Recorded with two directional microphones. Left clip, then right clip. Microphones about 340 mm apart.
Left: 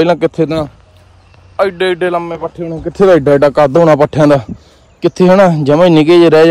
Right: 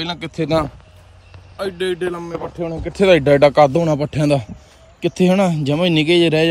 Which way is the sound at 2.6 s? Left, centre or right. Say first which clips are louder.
Left 6 dB; centre.